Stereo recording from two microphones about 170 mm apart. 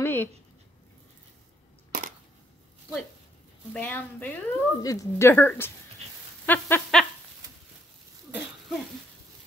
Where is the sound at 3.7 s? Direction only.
10° left (ahead or behind).